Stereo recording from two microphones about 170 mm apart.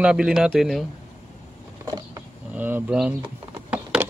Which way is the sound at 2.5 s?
10° right (ahead or behind).